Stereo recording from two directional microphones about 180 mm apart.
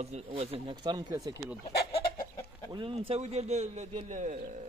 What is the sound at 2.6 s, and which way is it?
Speech, 30° right (ahead or behind).